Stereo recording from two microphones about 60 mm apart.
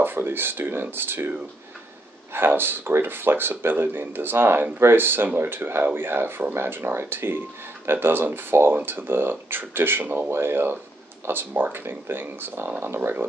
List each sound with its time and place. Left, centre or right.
0.0 s speech: right
2.3 s speech: right